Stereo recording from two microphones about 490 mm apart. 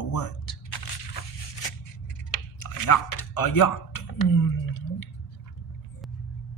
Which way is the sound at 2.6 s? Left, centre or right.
Left.